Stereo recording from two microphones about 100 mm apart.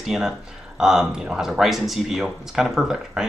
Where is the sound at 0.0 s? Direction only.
5° right (ahead or behind).